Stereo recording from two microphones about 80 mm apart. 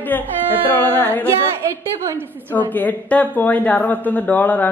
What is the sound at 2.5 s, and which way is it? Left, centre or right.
A woman's voice, left.